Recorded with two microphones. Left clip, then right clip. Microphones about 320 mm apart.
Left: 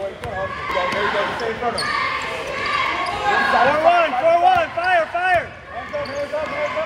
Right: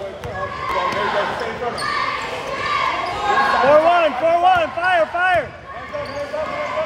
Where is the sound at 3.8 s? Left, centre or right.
Right.